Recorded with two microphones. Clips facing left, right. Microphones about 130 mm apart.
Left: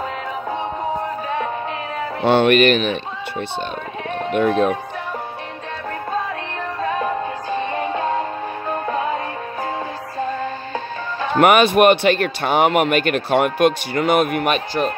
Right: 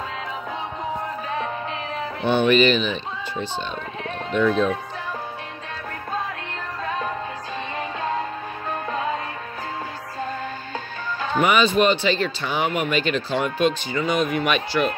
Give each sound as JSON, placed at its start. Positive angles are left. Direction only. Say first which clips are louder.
{"t": 2.2, "sound": "speech", "louder": "left 4 dB", "side_deg": 80}
{"t": 7.8, "sound": "music", "louder": "left 6 dB", "side_deg": 30}
{"t": 11.3, "sound": "speech", "louder": "left 5 dB", "side_deg": 65}
{"t": 14.5, "sound": "speech", "louder": "left 2 dB", "side_deg": 40}